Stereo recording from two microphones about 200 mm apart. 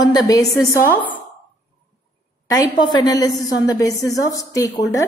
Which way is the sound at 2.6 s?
20° left (ahead or behind).